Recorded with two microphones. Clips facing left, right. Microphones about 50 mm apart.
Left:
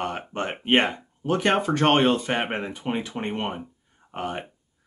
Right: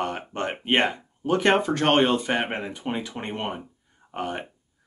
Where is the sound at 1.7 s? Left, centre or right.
Left.